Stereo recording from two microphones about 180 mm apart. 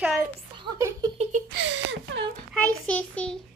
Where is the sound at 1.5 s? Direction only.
80° right.